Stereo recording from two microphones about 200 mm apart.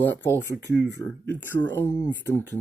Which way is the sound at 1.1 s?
10° left (ahead or behind).